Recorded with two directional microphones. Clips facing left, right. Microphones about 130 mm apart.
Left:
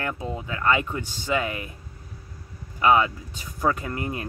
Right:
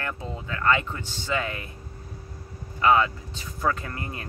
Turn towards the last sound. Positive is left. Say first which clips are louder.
# left 5 dB
turn(degrees=15)  # may be behind; listen again after turning